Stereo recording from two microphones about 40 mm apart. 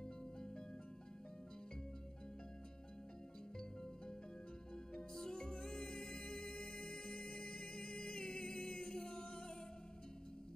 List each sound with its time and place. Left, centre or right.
5.1 s music: centre